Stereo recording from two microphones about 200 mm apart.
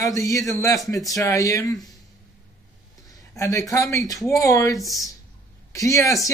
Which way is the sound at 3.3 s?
15° left (ahead or behind).